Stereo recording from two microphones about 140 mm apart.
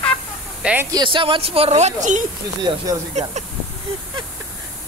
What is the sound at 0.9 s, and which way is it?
Speech, 35° right (ahead or behind).